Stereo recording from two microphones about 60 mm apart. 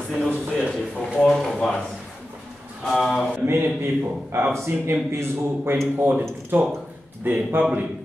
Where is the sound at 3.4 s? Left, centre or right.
Right.